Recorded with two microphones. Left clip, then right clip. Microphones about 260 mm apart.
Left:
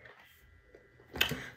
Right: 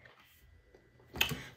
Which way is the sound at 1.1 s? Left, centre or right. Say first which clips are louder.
Left 2 dB; centre.